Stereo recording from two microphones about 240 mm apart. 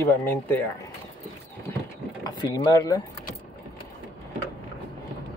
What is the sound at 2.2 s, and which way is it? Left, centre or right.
Speech, centre.